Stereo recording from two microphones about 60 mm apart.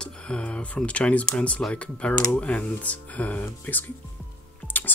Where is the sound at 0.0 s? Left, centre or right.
Centre.